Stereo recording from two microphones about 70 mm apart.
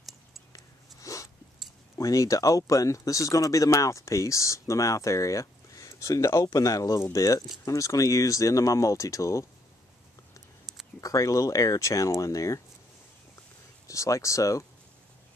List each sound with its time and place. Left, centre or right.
1.0 s biting: left
2.0 s speech: left
11.0 s speech: left
13.8 s speech: left